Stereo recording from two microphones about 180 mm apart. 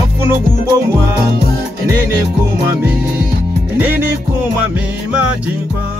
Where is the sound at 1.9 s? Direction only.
10° right (ahead or behind).